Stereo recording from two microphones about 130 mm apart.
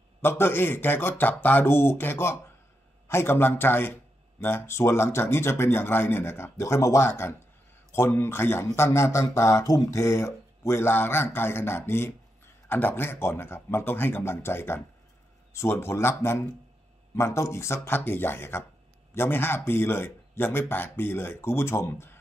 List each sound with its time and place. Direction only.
0.2 s a man's voice: 15° left (ahead or behind)